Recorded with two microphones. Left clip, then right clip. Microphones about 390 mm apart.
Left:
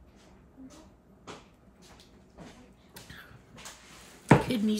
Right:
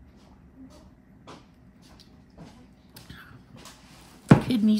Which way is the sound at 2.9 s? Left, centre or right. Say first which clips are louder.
Right 1 dB; centre.